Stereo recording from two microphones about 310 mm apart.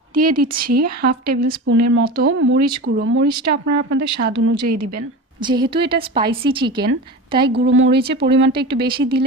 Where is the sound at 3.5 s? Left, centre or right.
Right.